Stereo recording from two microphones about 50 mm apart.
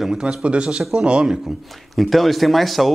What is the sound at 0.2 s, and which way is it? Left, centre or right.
Speech, right.